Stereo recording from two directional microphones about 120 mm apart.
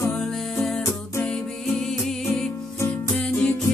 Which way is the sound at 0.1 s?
5° left (ahead or behind).